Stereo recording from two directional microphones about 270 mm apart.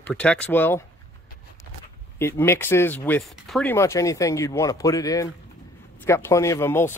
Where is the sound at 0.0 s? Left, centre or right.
Centre.